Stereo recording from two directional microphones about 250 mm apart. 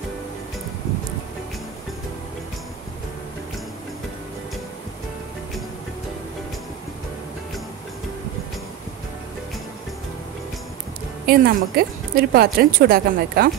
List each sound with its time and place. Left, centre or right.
11.2 s a woman's voice: right